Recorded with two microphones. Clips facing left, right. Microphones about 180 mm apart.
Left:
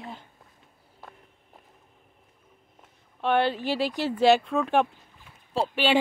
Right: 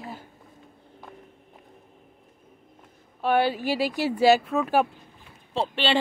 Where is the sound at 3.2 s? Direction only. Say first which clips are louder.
Right 1 dB; 5° right (ahead or behind).